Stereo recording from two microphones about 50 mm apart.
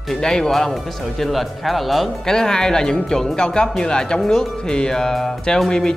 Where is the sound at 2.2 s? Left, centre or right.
Centre.